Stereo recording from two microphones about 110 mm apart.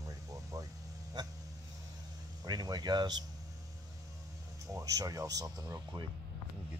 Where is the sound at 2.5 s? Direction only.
40° right (ahead or behind).